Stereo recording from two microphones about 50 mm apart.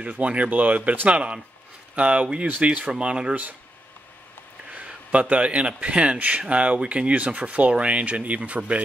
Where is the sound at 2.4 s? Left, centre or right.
Right.